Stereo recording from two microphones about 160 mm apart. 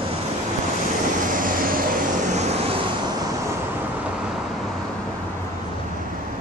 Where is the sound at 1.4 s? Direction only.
60° right (ahead or behind).